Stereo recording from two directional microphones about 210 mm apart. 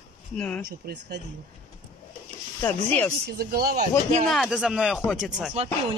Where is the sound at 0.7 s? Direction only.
45° right (ahead or behind).